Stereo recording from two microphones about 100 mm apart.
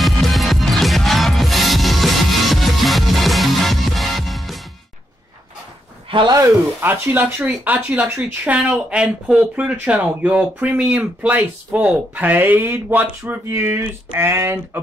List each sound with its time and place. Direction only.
0.0 s music: centre (ahead or behind)
6.0 s a sound: 55° right (ahead or behind)
6.8 s speech: 20° right (ahead or behind)